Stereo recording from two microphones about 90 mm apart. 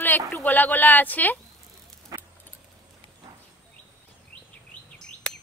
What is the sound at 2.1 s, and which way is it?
Vehicle, 40° right (ahead or behind).